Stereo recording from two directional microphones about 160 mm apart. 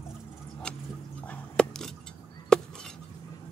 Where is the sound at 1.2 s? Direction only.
5° left (ahead or behind).